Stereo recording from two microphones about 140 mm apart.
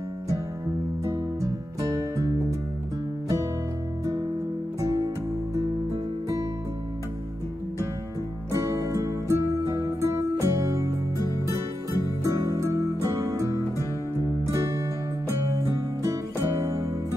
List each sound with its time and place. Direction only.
1.0 s music: 25° right (ahead or behind)
4.7 s music: 25° right (ahead or behind)
8.5 s music: 20° right (ahead or behind)
12.2 s music: 20° right (ahead or behind)
14.5 s music: 20° right (ahead or behind)